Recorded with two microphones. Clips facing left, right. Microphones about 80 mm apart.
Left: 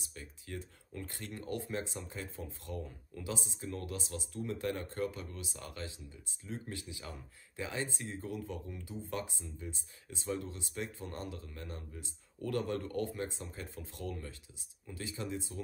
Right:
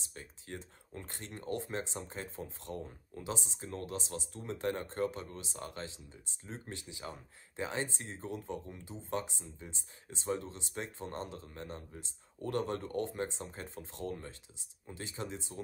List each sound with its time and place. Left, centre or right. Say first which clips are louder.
0.0 s speech: even; right